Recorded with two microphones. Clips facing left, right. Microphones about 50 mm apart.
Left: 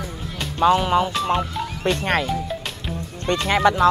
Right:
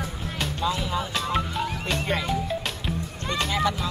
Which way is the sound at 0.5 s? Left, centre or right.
Left.